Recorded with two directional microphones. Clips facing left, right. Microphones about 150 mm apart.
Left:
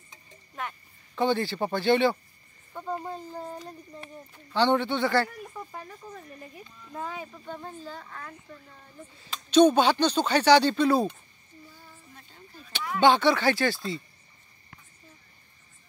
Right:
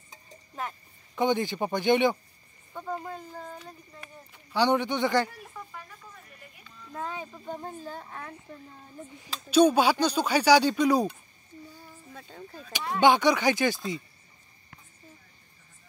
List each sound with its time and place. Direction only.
0.1 s a sound: 35° right (ahead or behind)
1.1 s speech: 15° right (ahead or behind)
2.7 s speech: 15° left (ahead or behind)
4.5 s speech: 15° right (ahead or behind)
5.7 s speech: 35° left (ahead or behind)
6.8 s speech: 10° left (ahead or behind)
7.8 s speech: 15° right (ahead or behind)
9.1 s speech: 10° right (ahead or behind)
12.1 s speech: 90° right
13.0 s speech: 15° right (ahead or behind)